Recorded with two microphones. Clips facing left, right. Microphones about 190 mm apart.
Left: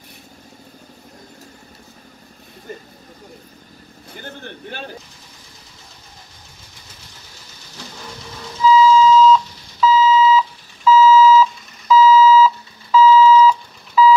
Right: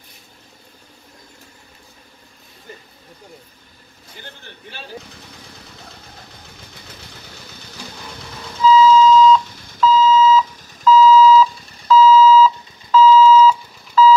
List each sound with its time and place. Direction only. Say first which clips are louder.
4.2 s speech: left 7 dB; 55° left (ahead or behind)
8.6 s alarm clock: right 1 dB; 10° left (ahead or behind)